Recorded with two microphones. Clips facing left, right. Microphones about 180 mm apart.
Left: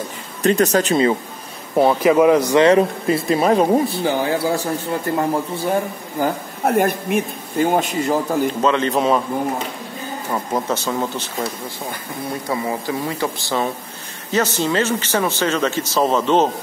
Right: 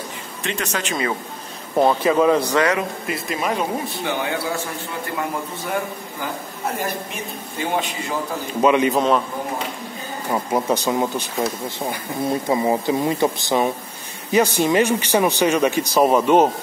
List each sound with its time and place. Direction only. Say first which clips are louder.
0.4 s speech: left 11 dB; 40° left (ahead or behind)
1.8 s speech: left 3 dB; 10° left (ahead or behind)
2.6 s speech: left 7 dB; 30° left (ahead or behind)
6.2 s speech: left 8 dB; 55° left (ahead or behind)
8.5 s a man's voice: right 2 dB; 10° right (ahead or behind)
8.9 s a man's voice: left 1 dB; 5° left (ahead or behind)
10.3 s a man's voice: right 2 dB; 15° right (ahead or behind)